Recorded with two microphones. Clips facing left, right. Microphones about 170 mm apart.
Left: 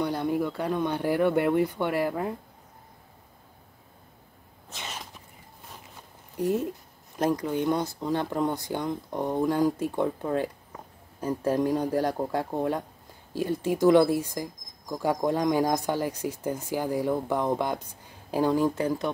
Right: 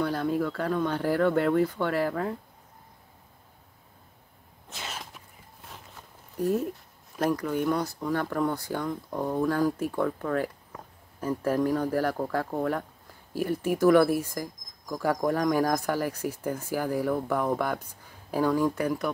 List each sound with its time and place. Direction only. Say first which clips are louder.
0.0 s speech: even; 15° left (ahead or behind)
4.7 s a sound: even; 5° right (ahead or behind)
6.3 s speech: even; 20° left (ahead or behind)